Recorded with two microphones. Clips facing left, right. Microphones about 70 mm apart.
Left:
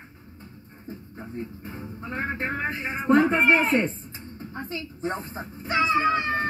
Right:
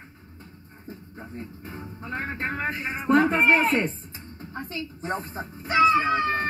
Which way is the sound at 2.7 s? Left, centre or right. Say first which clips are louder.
Left 1 dB; left.